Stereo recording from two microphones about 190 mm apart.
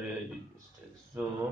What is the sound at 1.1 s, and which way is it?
Speech, 15° right (ahead or behind).